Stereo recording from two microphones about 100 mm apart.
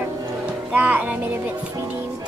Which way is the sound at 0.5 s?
15° right (ahead or behind).